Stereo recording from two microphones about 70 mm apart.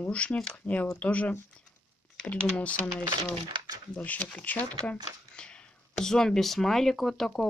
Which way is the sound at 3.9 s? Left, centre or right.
Left.